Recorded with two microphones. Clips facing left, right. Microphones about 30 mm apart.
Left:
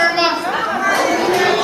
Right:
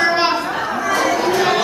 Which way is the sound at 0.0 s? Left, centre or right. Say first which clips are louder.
Left 1 dB; centre.